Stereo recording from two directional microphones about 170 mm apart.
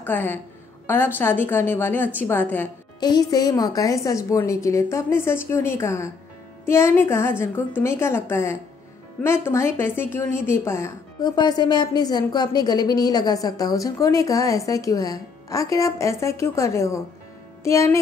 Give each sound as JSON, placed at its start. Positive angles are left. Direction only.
{"t": 0.0, "sound": "a woman's voice", "side_deg": 10}
{"t": 3.0, "sound": "a woman's voice", "side_deg": 25}